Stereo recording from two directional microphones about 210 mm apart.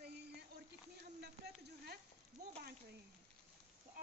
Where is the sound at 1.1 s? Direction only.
50° right (ahead or behind).